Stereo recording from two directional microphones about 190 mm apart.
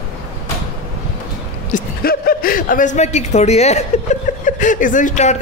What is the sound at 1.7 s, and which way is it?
Speech, 50° left (ahead or behind).